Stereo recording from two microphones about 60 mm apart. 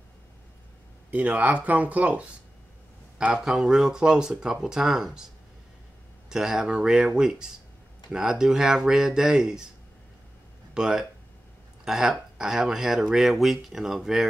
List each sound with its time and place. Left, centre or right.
1.1 s speech: right
3.3 s speech: centre
6.2 s speech: centre
10.7 s speech: centre